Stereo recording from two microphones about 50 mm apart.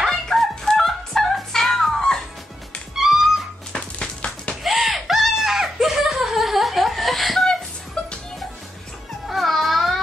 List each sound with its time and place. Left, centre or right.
0.1 s fowl: centre
3.0 s music: centre
3.7 s music: centre
4.6 s a sound: centre
7.4 s a sound: centre
9.3 s music: centre